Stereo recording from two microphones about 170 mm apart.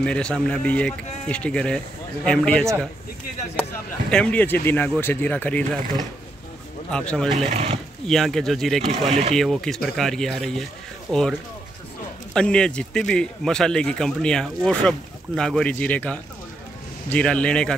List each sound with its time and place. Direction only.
0.0 s a man's voice: 5° left (ahead or behind)
4.1 s speech: 5° left (ahead or behind)
6.9 s a man's voice: 5° left (ahead or behind)
7.2 s speech: 40° right (ahead or behind)
8.1 s a man's voice: centre (ahead or behind)
12.4 s a man's voice: 5° left (ahead or behind)